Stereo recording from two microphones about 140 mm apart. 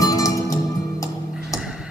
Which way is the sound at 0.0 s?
25° left (ahead or behind).